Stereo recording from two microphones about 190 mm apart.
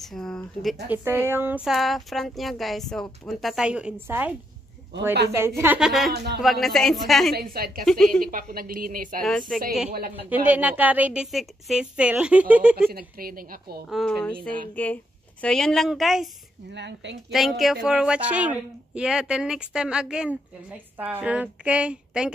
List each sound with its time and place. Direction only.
0.0 s a woman's voice: centre (ahead or behind)
0.8 s a woman's voice: 10° right (ahead or behind)
5.6 s a woman's voice: 5° right (ahead or behind)
6.1 s speech: 60° right (ahead or behind)
6.4 s a woman's voice: centre (ahead or behind)
7.3 s a woman's voice: 50° right (ahead or behind)
7.8 s a woman's voice: 5° left (ahead or behind)
8.3 s a woman's voice: 50° right (ahead or behind)
9.5 s a woman's voice: centre (ahead or behind)
10.3 s a woman's voice: 10° right (ahead or behind)
12.9 s a woman's voice: 50° right (ahead or behind)
13.8 s a woman's voice: centre (ahead or behind)
16.7 s speech: 70° right (ahead or behind)
17.3 s a woman's voice: centre (ahead or behind)